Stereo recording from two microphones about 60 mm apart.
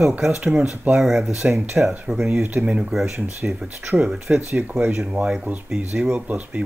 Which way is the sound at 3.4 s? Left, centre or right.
Centre.